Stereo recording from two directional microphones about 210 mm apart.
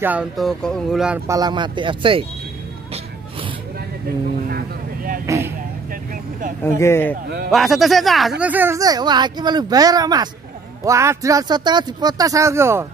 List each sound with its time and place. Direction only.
0.0 s speech: 5° right (ahead or behind); by 2.2 s 25° right (ahead or behind)
4.5 s vehicle: 45° right (ahead or behind)
5.2 s speech: 15° right (ahead or behind)
6.8 s speech: 10° left (ahead or behind)
7.5 s speech: centre (ahead or behind)